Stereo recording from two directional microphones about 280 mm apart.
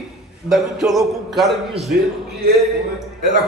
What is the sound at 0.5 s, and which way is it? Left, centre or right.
A man's voice, centre.